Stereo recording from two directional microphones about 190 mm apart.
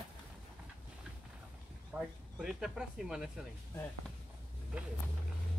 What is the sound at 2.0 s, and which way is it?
Speech, centre (ahead or behind).